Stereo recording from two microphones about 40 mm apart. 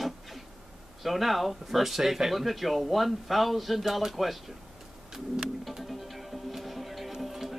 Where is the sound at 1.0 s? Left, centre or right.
Centre.